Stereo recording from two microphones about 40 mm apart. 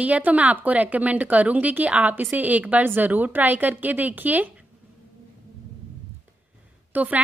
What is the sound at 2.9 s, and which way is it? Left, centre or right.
A woman's voice, right.